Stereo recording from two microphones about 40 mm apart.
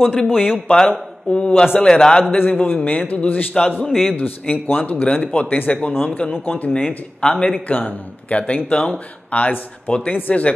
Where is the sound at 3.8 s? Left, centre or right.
Centre.